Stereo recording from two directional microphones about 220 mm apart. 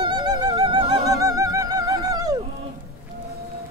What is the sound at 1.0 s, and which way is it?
Music, 15° right (ahead or behind).